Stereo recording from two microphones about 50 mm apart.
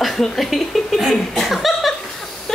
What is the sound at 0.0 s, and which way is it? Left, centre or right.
Chuckle, centre.